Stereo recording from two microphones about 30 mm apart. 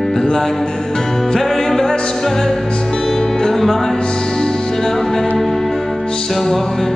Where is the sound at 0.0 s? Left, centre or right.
Centre.